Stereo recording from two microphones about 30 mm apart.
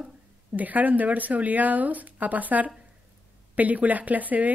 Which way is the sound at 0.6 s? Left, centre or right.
Right.